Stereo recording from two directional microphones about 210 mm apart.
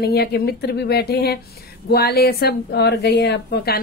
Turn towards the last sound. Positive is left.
turn(degrees=50)  # may be behind; listen again after turning